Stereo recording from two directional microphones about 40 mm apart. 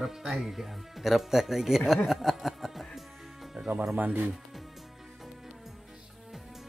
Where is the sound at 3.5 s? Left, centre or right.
Right.